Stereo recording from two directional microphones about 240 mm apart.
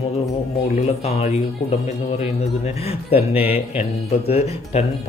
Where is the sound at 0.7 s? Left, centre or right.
Left.